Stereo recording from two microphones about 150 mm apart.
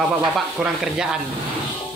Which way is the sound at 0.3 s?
5° right (ahead or behind).